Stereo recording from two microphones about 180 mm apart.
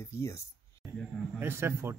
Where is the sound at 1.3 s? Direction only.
15° right (ahead or behind).